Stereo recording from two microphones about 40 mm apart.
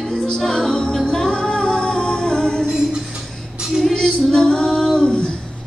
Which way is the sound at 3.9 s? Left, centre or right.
Centre.